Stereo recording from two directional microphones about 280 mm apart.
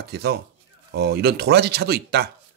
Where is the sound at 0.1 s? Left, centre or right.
Right.